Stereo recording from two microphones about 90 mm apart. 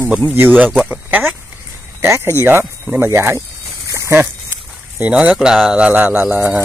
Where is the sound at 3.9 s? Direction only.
30° right (ahead or behind).